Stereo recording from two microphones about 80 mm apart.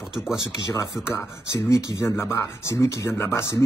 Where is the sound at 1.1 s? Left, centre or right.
Left.